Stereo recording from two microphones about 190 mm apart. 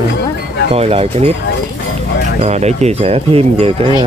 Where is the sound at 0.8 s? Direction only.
30° right (ahead or behind).